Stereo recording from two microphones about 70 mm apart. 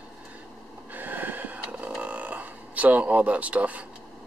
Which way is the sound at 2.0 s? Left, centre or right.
Right.